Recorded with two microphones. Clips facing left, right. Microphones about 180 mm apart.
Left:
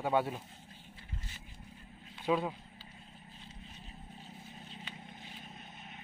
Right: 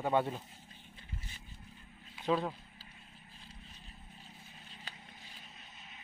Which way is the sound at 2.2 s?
5° left (ahead or behind).